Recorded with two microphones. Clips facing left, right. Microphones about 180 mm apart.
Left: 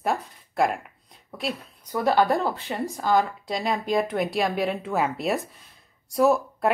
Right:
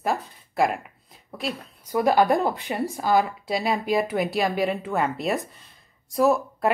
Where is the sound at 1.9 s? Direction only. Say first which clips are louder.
Right 2 dB; 15° right (ahead or behind).